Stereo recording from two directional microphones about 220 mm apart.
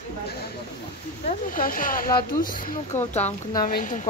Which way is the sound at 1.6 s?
40° left (ahead or behind).